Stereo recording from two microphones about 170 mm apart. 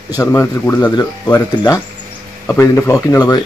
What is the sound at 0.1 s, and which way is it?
Speech, 15° left (ahead or behind).